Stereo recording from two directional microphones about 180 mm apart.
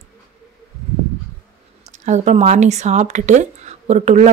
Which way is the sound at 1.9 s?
40° right (ahead or behind).